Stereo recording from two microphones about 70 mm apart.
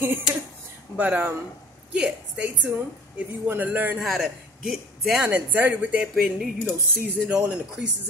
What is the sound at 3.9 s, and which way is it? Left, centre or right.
Speech, centre.